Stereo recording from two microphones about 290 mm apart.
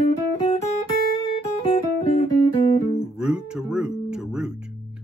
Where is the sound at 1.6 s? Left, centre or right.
Centre.